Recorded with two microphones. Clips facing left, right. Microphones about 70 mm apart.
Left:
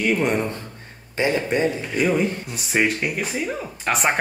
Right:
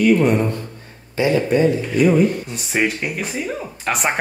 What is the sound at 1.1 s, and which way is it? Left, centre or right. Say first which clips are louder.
Speech: right 4 dB; left.